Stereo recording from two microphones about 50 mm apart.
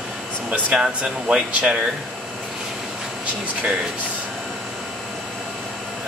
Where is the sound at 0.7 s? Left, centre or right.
Centre.